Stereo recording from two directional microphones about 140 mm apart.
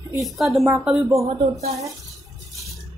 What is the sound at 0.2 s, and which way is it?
Speech, centre (ahead or behind).